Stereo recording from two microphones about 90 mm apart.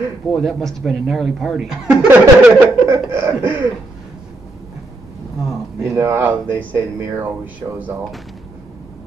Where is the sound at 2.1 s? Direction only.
15° right (ahead or behind).